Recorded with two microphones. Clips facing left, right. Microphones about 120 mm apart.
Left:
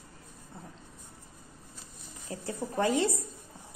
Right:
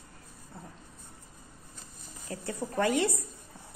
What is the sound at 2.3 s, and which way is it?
Speech, 25° left (ahead or behind).